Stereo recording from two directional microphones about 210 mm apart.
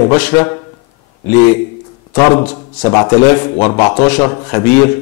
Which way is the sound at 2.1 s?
20° left (ahead or behind).